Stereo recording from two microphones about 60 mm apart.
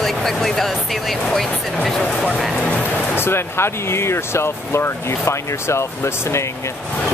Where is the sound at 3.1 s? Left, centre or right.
Left.